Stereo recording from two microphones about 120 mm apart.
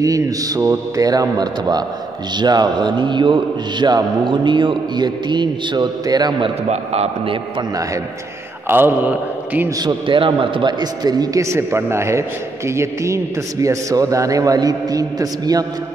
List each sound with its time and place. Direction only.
0.0 s a man's voice: 25° right (ahead or behind)
6.7 s a man's voice: 60° right (ahead or behind)
8.6 s a man's voice: 20° right (ahead or behind)
9.8 s a man's voice: 40° right (ahead or behind)